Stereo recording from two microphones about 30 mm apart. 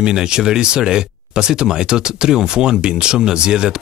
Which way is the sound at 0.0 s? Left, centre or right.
Right.